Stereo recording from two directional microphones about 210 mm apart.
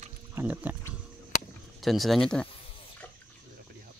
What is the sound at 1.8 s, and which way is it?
Speech, centre (ahead or behind).